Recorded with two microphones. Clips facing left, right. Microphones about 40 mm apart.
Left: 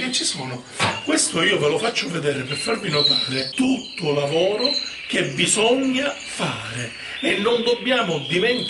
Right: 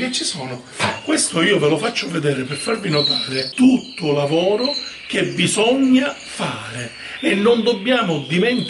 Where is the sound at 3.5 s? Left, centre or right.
Centre.